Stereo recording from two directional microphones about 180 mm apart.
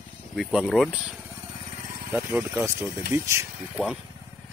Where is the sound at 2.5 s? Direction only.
15° right (ahead or behind).